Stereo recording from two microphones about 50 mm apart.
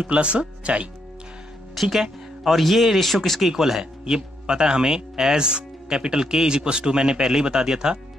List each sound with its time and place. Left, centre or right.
0.0 s speech: right
1.8 s speech: centre
3.3 s speech: centre